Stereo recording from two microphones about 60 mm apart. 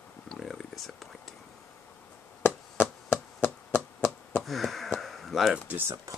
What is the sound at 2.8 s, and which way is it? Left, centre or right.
Chop, left.